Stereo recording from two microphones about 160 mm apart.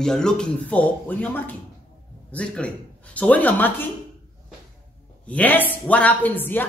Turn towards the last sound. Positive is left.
turn(degrees=10)  # may be behind; listen again after turning